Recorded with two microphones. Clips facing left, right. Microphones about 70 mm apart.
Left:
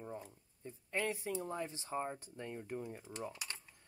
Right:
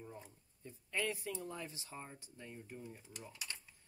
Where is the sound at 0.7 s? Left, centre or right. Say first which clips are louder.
Left 2 dB; left.